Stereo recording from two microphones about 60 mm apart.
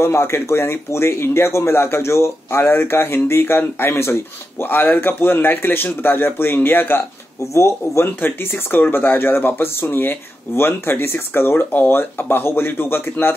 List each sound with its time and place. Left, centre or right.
0.0 s speech: left
7.5 s speech: left
8.7 s speech: left